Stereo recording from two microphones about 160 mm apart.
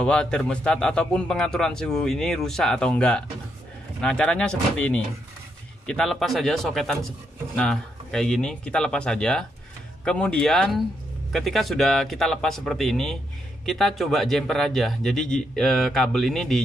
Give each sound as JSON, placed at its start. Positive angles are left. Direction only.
{"t": 0.0, "sound": "a man's voice", "side_deg": 5}